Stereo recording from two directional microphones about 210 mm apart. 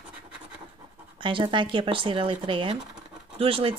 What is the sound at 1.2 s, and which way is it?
Speech, 25° right (ahead or behind).